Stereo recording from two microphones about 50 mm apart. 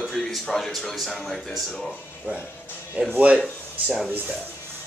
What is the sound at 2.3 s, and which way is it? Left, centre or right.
Speech, right.